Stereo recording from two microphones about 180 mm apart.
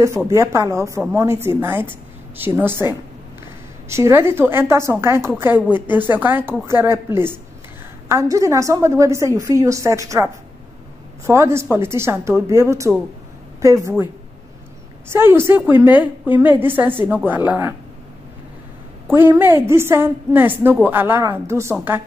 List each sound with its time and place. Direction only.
0.3 s a woman's voice: 15° right (ahead or behind)
15.1 s a woman's voice: 15° right (ahead or behind)
19.0 s a woman's voice: 10° right (ahead or behind)